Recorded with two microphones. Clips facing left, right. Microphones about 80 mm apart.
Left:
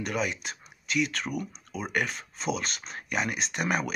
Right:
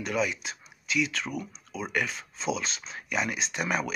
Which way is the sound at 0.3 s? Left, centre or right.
Left.